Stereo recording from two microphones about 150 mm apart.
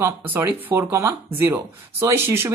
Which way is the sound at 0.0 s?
15° right (ahead or behind).